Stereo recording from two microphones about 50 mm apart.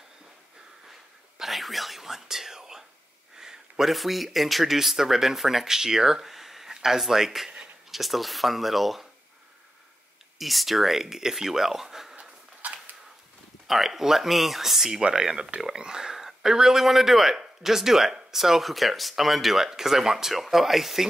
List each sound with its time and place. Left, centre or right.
1.4 s speech: centre
10.4 s speech: centre
12.2 s a sound: right
13.7 s speech: centre